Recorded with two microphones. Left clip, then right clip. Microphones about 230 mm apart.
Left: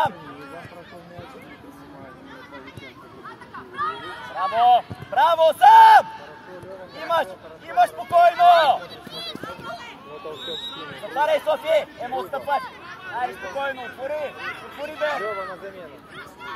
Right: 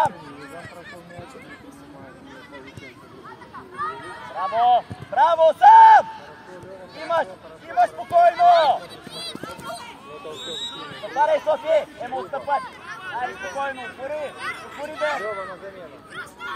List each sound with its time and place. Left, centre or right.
3.5 s a sound: left
7.1 s speech: left
9.1 s run: centre
10.9 s speech: left